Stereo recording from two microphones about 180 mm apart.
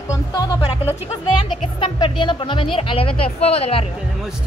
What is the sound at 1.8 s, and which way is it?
A woman's voice, 25° left (ahead or behind).